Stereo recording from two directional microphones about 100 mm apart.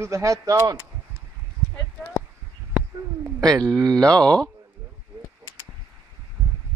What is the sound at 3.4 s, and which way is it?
Speech, 35° right (ahead or behind).